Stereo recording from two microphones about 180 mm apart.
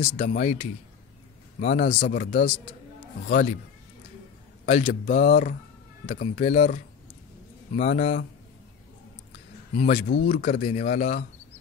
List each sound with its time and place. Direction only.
0.2 s speech: 45° left (ahead or behind)
4.6 s speech: 35° left (ahead or behind)
10.0 s speech: 50° left (ahead or behind)